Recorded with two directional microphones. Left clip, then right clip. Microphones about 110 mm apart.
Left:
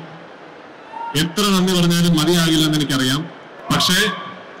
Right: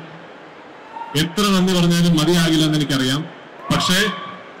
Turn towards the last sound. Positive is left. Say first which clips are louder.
# left 1 dB
turn(degrees=45)  # may be behind; listen again after turning